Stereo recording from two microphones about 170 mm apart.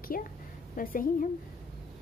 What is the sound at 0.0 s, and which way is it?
A woman's voice, 55° left (ahead or behind).